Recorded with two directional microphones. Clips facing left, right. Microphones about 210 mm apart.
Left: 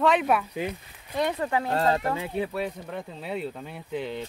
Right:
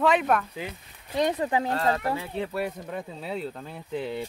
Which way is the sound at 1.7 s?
30° left (ahead or behind).